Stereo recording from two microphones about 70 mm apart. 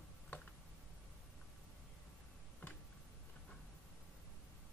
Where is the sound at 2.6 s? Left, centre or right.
Left.